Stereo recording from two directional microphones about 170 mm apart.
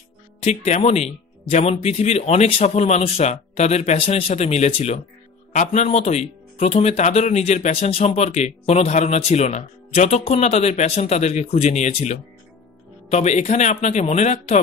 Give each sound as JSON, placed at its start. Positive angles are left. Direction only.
{"t": 0.7, "sound": "speech", "side_deg": 40}